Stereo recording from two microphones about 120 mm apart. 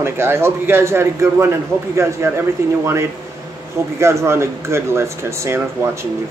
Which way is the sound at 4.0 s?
25° right (ahead or behind).